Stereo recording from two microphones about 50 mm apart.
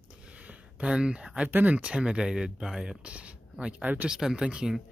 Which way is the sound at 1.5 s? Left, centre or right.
Right.